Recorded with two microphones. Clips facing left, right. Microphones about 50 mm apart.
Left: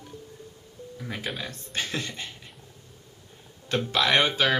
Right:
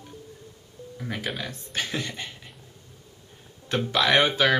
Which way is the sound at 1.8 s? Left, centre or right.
Centre.